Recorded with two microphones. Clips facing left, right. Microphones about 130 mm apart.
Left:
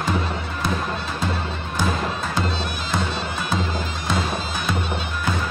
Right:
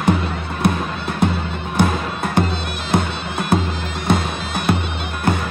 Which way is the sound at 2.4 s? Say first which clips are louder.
Right 7 dB; 60° right (ahead or behind).